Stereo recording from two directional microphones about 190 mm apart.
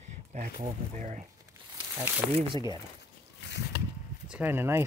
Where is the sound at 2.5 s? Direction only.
20° right (ahead or behind).